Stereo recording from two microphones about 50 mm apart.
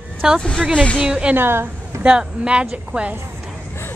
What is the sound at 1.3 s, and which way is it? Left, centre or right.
Speech, right.